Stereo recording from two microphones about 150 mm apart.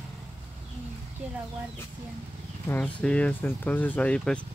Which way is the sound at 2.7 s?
10° left (ahead or behind).